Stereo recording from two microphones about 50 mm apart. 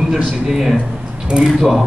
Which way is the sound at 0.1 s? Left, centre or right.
Centre.